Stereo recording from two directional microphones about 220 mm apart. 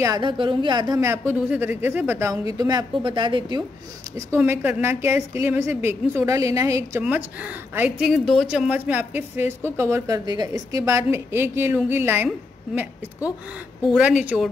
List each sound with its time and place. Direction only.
0.0 s a woman's voice: 20° right (ahead or behind)
4.3 s a woman's voice: 10° right (ahead or behind)
14.3 s a woman's voice: centre (ahead or behind)